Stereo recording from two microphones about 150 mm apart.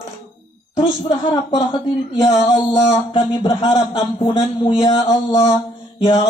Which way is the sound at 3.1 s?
30° left (ahead or behind).